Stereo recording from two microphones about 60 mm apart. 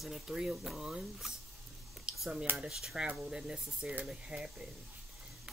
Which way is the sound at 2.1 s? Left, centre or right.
Centre.